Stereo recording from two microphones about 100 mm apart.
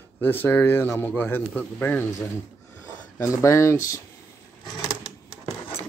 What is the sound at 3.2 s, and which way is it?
Speech, 30° left (ahead or behind).